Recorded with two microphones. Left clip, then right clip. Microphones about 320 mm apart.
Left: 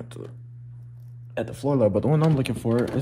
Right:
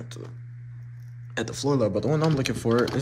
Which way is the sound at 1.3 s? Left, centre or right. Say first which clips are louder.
Left 1 dB; centre.